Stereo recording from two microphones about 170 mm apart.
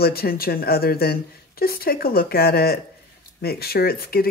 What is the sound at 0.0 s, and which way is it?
Speech, 65° left (ahead or behind).